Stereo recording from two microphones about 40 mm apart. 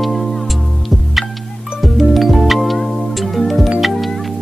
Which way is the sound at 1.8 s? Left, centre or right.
Centre.